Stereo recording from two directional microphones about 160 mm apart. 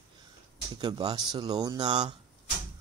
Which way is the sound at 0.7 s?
25° right (ahead or behind).